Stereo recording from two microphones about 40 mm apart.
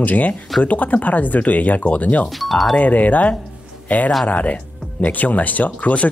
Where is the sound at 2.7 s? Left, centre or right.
Left.